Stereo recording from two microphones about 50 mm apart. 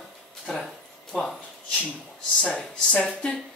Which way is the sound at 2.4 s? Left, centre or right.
Centre.